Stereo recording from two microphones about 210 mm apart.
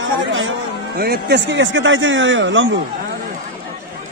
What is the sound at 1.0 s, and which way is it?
Speech, 50° right (ahead or behind).